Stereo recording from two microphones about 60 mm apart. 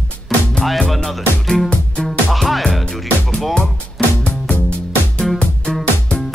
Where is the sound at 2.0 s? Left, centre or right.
Centre.